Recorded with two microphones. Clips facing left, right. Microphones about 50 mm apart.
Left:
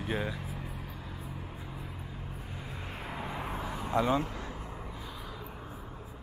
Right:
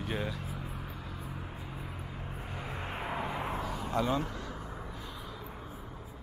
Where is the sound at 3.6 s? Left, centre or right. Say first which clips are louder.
Left 5 dB; centre.